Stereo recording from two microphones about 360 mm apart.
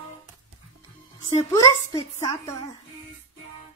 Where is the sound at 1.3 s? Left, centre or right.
Centre.